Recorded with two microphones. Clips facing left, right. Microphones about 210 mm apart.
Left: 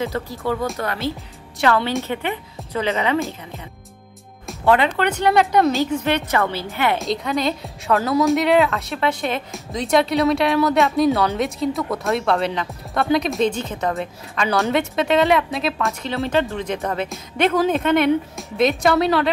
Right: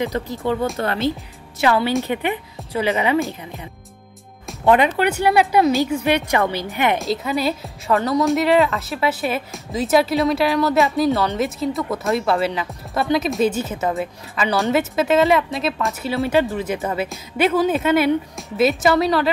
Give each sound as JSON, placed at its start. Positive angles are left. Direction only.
{"t": 0.0, "sound": "speech", "side_deg": -15}
{"t": 2.0, "sound": "a woman's voice", "side_deg": -15}
{"t": 4.6, "sound": "a woman's voice", "side_deg": -15}
{"t": 7.0, "sound": "a woman's voice", "side_deg": 0}